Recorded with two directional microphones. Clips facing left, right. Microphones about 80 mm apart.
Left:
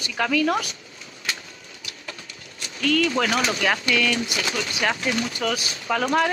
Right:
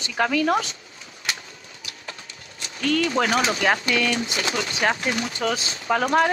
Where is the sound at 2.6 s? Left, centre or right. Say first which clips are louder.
Left 1 dB; right.